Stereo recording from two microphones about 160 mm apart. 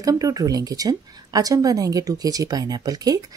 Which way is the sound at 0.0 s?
20° right (ahead or behind).